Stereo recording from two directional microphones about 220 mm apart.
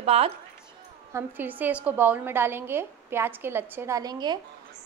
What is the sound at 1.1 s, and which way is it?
A woman's voice, 10° right (ahead or behind).